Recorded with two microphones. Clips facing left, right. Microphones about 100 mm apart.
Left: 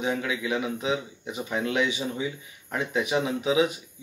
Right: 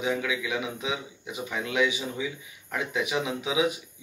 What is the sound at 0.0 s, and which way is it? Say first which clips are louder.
Speech: even; 35° left (ahead or behind).